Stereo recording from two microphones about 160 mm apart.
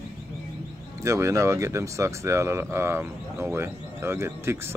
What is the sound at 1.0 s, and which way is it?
Speech, 20° right (ahead or behind).